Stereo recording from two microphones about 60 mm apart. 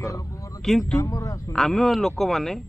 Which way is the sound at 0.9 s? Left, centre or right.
Left.